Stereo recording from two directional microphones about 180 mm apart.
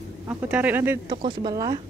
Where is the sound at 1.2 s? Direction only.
25° right (ahead or behind).